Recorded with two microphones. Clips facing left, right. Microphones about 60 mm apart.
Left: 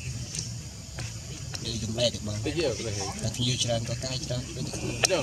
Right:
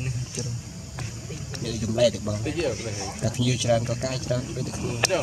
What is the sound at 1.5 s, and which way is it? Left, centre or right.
Speech, right.